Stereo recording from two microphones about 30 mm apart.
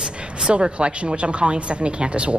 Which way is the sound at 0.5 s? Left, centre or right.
Right.